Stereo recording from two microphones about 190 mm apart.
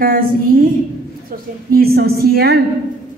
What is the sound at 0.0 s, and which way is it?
Speech, 50° right (ahead or behind).